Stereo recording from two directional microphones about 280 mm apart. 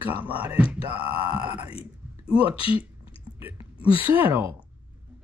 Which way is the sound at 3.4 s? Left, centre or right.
Centre.